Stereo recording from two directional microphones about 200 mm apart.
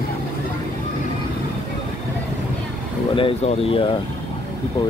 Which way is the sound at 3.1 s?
30° left (ahead or behind).